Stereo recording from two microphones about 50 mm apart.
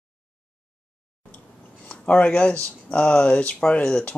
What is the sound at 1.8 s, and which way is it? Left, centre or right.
Speech, left.